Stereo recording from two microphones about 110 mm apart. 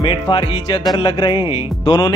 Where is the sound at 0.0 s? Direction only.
50° left (ahead or behind).